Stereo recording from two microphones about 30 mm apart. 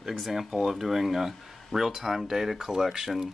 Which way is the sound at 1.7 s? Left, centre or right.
Left.